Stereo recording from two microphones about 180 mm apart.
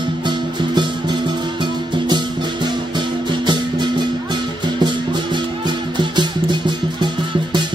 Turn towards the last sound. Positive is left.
turn(degrees=-25)  # may be behind; listen again after turning